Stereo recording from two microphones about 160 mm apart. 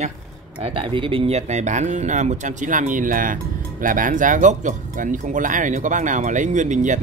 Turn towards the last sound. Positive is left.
turn(degrees=-50)  # may be behind; listen again after turning